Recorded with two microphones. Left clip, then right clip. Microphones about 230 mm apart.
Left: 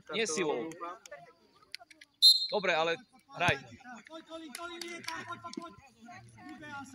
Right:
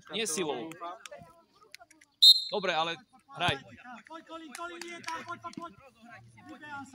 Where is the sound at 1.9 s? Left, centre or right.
Centre.